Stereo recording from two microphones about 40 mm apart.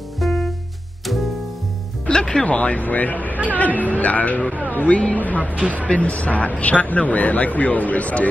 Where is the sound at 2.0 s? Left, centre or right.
Centre.